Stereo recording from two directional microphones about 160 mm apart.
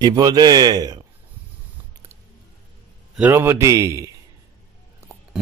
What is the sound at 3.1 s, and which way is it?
Speech, 10° right (ahead or behind).